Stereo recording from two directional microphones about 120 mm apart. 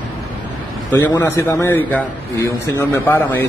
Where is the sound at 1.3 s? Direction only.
20° left (ahead or behind).